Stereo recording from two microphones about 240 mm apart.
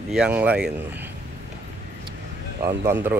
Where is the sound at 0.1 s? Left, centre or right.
Centre.